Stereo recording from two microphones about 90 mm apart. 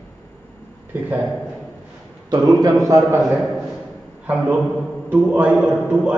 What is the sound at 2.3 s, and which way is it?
Speech, 40° right (ahead or behind).